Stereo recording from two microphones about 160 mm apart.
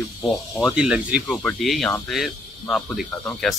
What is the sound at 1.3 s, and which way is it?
Speech, 5° left (ahead or behind).